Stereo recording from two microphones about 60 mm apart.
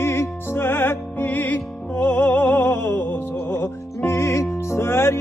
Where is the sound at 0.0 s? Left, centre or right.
Left.